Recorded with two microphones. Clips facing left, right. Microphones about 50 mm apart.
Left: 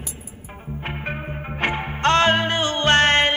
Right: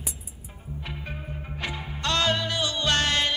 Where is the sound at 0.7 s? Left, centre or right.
Left.